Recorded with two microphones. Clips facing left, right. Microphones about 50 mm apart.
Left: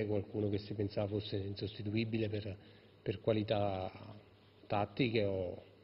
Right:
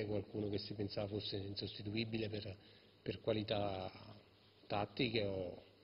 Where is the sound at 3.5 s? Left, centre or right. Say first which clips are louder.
Left 5 dB; centre.